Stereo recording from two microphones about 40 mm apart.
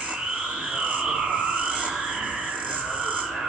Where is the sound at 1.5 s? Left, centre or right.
Right.